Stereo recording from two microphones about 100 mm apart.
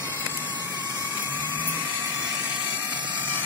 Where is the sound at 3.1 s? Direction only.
15° right (ahead or behind).